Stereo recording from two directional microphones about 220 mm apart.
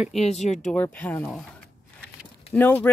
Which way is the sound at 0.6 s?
5° left (ahead or behind).